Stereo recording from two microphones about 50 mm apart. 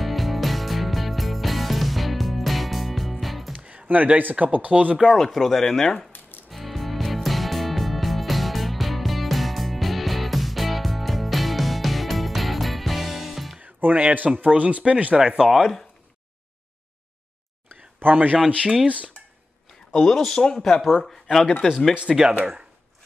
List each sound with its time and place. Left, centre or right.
0.0 s music: centre
3.5 s music: right
3.8 s speech: right
5.1 s speech: centre
6.5 s music: centre
13.6 s music: right
13.9 s speech: right
15.1 s speech: centre
15.5 s speech: centre
17.9 s speech: right
19.9 s speech: centre